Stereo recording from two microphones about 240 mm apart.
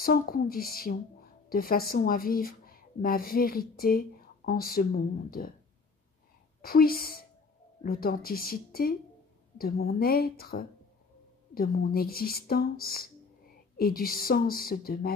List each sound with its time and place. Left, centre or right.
0.0 s a woman's voice: left
6.6 s a woman's voice: left